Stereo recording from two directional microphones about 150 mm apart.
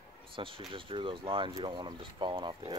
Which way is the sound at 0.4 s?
35° right (ahead or behind).